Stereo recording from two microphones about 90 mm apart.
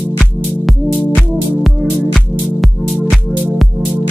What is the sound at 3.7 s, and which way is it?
Music, 55° right (ahead or behind).